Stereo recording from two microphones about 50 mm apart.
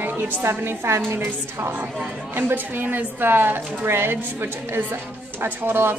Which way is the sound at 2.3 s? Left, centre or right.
Right.